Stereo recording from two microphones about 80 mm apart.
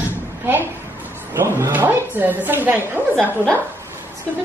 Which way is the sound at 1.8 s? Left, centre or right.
Right.